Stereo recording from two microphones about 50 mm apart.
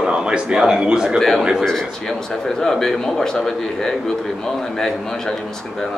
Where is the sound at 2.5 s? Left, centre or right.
Centre.